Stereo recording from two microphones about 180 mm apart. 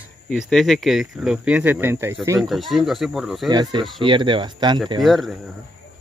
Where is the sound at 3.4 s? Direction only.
25° right (ahead or behind).